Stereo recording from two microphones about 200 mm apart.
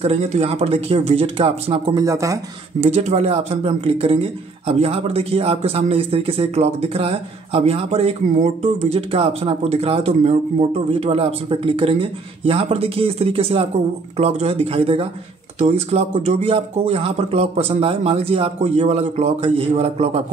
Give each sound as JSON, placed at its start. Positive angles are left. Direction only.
{"t": 0.0, "sound": "speech", "side_deg": -30}
{"t": 2.0, "sound": "speech", "side_deg": -15}
{"t": 2.8, "sound": "speech", "side_deg": -35}